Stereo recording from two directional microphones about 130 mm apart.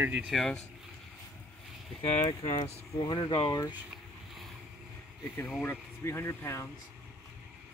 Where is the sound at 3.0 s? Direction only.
40° left (ahead or behind).